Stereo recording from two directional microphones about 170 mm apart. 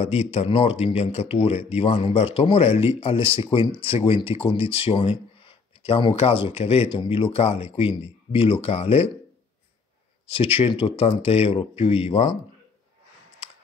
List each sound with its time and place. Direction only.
0.0 s speech: 40° left (ahead or behind)
10.2 s speech: 35° left (ahead or behind)